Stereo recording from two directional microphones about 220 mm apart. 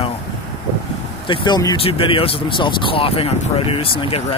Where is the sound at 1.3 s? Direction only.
20° left (ahead or behind).